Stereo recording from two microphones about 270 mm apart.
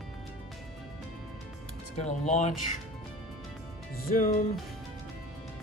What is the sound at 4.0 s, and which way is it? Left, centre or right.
Speech, left.